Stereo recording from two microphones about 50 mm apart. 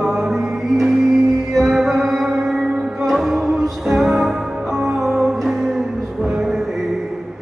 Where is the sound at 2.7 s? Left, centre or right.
Centre.